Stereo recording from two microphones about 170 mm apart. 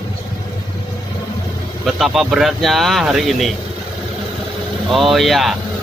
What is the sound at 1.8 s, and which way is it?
Speech, centre (ahead or behind).